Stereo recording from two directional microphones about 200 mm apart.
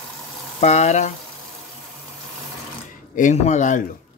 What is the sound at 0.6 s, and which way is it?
Speech, 35° left (ahead or behind).